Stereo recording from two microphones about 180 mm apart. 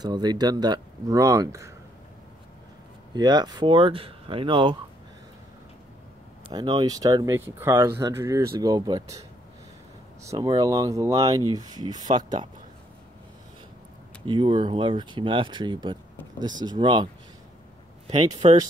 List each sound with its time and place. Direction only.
0.0 s speech: 20° right (ahead or behind)
3.2 s speech: 25° right (ahead or behind)
6.5 s speech: 25° right (ahead or behind)
10.2 s speech: 20° right (ahead or behind)
14.2 s speech: 25° right (ahead or behind)
18.4 s speech: 35° right (ahead or behind)